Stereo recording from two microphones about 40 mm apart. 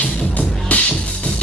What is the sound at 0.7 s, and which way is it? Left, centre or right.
Music, left.